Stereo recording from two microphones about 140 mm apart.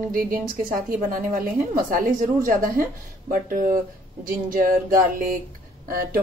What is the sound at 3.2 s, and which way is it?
A woman's voice, 85° right.